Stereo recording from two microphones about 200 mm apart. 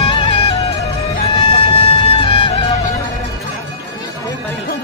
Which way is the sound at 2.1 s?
25° left (ahead or behind).